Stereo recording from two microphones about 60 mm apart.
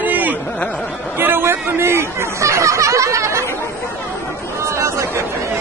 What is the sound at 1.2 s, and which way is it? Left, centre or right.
Speech, right.